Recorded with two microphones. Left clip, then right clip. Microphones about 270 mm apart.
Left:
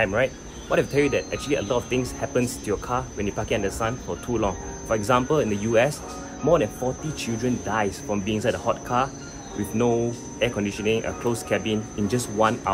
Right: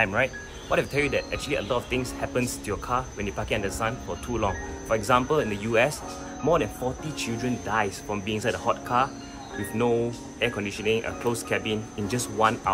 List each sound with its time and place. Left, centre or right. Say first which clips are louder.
0.0 s speech: left 2 dB; centre